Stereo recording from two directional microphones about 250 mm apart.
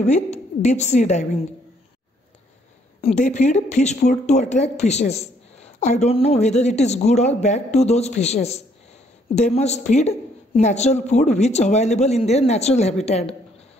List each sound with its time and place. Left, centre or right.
0.0 s a woman's voice: left
3.0 s speech: left